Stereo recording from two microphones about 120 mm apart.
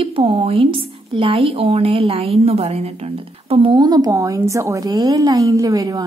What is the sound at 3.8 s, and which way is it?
A woman's voice, 30° right (ahead or behind).